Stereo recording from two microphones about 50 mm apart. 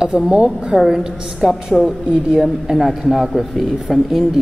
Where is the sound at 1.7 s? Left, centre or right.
Centre.